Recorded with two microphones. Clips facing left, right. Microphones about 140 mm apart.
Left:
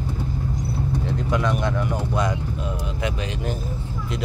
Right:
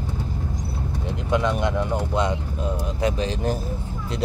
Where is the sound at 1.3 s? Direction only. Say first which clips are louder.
Right 2 dB; 25° right (ahead or behind).